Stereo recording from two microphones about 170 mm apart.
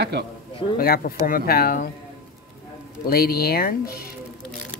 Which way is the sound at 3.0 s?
60° left (ahead or behind).